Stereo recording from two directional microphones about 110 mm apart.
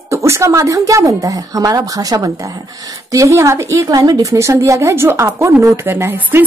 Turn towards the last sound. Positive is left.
turn(degrees=-20)  # may be behind; listen again after turning